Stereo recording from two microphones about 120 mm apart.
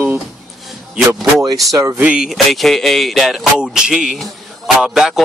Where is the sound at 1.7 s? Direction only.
25° right (ahead or behind).